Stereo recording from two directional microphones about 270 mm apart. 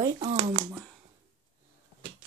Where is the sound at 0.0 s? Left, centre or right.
Right.